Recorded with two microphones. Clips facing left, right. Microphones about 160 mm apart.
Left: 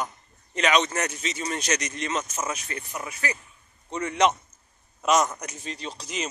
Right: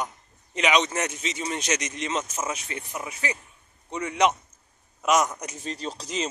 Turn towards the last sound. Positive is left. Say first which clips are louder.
# right 3 dB
turn(degrees=-30)  # may be behind; listen again after turning